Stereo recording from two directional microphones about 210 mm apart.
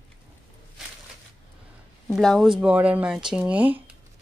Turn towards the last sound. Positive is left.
turn(degrees=-5)  # may be behind; listen again after turning